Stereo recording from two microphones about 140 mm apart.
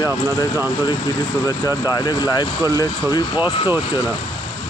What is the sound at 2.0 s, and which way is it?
Speech, 30° left (ahead or behind).